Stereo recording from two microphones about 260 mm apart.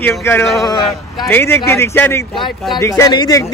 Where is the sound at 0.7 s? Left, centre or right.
Centre.